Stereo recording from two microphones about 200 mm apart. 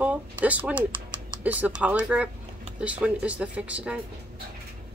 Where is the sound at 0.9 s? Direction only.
25° right (ahead or behind).